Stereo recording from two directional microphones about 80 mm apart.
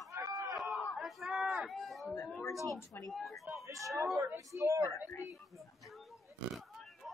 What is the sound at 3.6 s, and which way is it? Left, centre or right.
Speech, right.